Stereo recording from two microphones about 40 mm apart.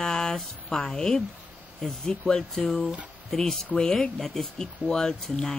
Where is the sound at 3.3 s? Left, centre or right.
Centre.